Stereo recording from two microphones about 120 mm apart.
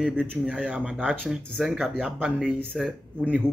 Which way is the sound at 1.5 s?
Centre (ahead or behind).